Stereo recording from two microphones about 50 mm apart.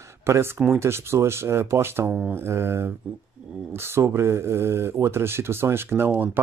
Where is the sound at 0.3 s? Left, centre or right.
Right.